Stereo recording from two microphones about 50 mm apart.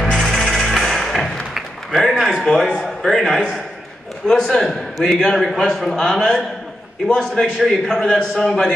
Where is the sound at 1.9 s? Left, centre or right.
Centre.